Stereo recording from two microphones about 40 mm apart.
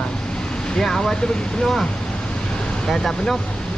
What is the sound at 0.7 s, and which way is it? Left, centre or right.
Speech, centre.